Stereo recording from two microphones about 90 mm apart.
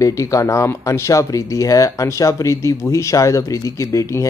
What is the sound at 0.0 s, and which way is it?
Speech, 35° left (ahead or behind).